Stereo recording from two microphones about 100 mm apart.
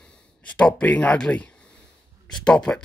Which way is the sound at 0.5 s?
15° left (ahead or behind).